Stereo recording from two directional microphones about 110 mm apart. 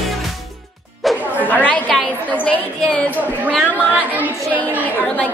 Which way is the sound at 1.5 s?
10° left (ahead or behind).